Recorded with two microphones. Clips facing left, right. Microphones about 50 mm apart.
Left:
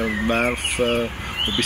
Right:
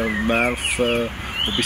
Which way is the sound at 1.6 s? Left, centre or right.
Centre.